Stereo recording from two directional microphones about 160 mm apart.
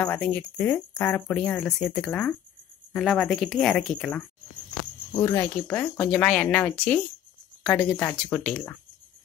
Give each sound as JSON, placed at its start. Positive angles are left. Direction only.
{"t": 0.0, "sound": "speech", "side_deg": 10}
{"t": 5.2, "sound": "speech", "side_deg": 20}